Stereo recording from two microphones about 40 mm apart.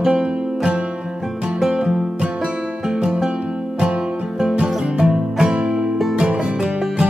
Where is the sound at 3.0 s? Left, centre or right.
Centre.